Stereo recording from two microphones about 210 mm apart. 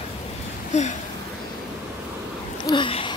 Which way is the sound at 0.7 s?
35° left (ahead or behind).